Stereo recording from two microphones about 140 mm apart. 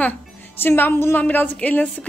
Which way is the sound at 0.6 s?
15° left (ahead or behind).